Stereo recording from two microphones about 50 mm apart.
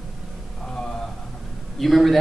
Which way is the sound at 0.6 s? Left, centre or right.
Centre.